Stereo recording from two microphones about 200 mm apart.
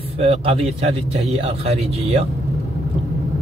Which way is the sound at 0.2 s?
30° right (ahead or behind).